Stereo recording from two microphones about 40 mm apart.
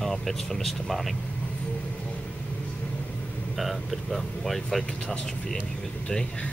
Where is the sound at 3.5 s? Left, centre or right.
Centre.